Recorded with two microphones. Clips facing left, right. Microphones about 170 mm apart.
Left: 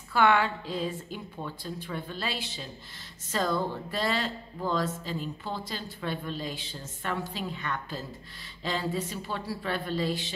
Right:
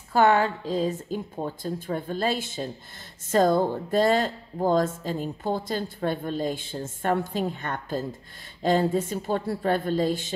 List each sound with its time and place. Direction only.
0.1 s speech: 40° right (ahead or behind)